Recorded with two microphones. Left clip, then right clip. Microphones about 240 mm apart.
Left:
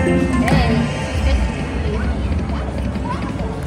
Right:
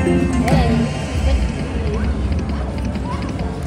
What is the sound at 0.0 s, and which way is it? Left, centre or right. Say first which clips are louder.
Music: left 1 dB; centre.